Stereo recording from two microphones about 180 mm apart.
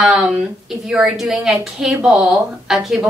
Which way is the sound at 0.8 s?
5° right (ahead or behind).